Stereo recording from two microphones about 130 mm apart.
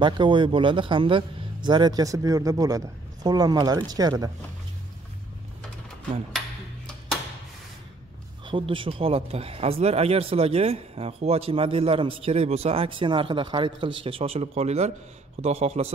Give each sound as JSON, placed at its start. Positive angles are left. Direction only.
{"t": 0.0, "sound": "a man's voice", "side_deg": -40}
{"t": 8.5, "sound": "speech", "side_deg": -40}